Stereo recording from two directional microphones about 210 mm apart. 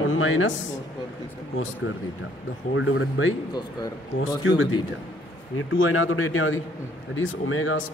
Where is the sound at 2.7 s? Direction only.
70° left (ahead or behind).